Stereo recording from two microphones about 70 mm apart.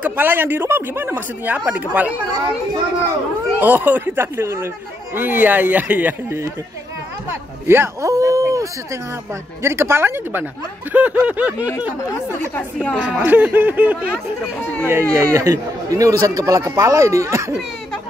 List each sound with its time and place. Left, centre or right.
0.0 s speech: right
3.6 s speech: right
7.2 s speech: right
8.1 s speech: right
9.6 s speech: right
12.9 s speech: right
14.9 s speech: right
15.4 s speech: right